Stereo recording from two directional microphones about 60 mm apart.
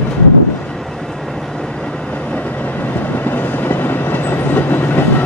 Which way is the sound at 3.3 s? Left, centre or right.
Left.